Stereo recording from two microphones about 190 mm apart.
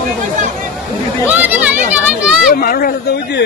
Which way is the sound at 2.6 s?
50° left (ahead or behind).